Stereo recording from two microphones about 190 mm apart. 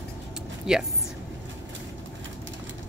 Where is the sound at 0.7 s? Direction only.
5° right (ahead or behind).